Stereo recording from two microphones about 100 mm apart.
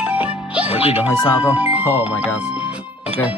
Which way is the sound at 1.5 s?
15° right (ahead or behind).